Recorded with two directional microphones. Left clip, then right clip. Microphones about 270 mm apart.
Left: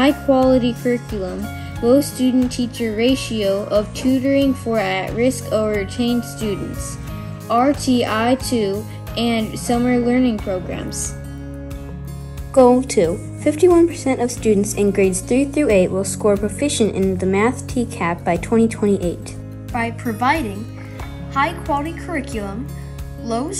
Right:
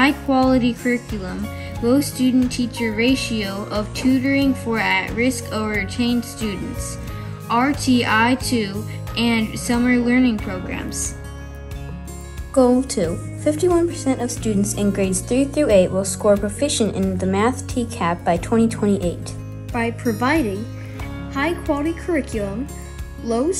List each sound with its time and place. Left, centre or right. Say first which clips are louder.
0.0 s speech: left 2 dB; centre
13.0 s speech: left 3 dB; left
21.5 s speech: even; left